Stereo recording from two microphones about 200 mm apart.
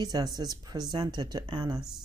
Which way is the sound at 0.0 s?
20° right (ahead or behind).